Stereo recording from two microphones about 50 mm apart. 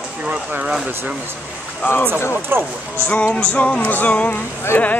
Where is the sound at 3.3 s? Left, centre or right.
Left.